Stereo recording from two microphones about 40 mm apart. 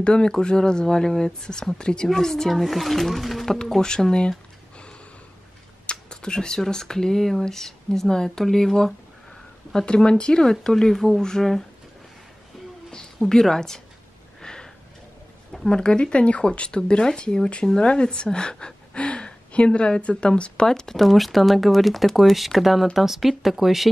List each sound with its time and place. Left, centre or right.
0.0 s speech: left
2.5 s speech: centre
3.6 s speech: centre
5.9 s speech: left
9.8 s speech: left
10.4 s speech: centre
12.9 s a woman's voice: centre
14.4 s a sound: centre
15.7 s speech: left
18.9 s gasp: left
20.2 s speech: left
20.6 s speech: centre